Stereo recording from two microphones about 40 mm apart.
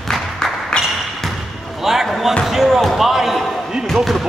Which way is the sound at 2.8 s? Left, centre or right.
Centre.